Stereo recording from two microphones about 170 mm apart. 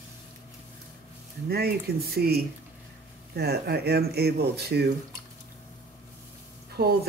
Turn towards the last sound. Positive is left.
turn(degrees=-65)  # may be behind; listen again after turning